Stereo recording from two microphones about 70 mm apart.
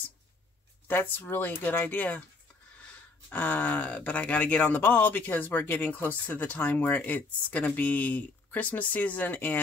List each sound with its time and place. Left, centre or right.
0.8 s speech: left
3.3 s speech: left